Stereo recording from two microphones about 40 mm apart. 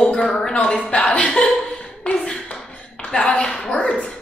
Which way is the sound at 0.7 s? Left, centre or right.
Left.